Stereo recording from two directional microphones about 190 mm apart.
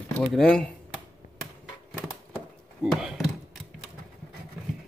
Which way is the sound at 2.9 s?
Centre (ahead or behind).